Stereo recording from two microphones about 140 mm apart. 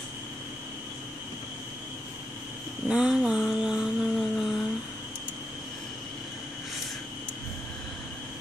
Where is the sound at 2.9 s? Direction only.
5° right (ahead or behind).